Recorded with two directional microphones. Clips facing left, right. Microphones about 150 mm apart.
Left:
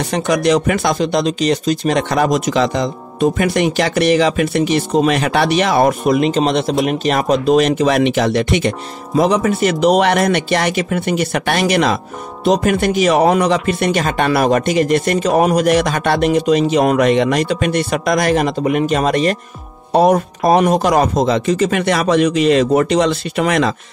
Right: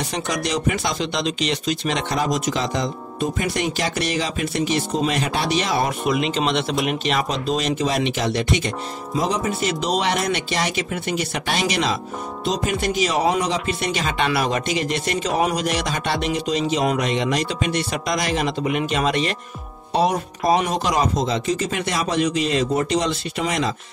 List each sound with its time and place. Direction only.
0.1 s speech: 65° left (ahead or behind)